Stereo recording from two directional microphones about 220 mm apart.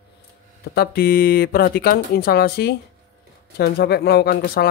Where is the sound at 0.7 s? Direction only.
45° left (ahead or behind).